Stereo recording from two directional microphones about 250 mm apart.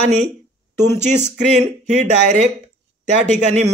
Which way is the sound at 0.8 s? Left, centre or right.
Right.